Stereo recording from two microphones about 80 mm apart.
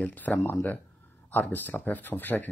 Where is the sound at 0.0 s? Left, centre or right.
Centre.